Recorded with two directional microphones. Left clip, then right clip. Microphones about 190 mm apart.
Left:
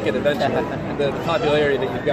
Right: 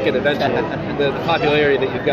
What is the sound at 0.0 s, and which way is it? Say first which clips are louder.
Speech: right 3 dB; 15° right (ahead or behind).